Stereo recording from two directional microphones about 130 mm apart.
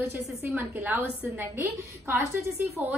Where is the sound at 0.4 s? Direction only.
15° right (ahead or behind).